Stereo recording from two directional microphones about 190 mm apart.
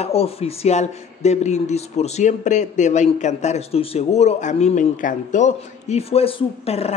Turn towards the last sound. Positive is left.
turn(degrees=30)  # may be behind; listen again after turning